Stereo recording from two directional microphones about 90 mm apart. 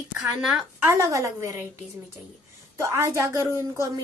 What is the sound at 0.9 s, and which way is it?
Speech, 35° right (ahead or behind).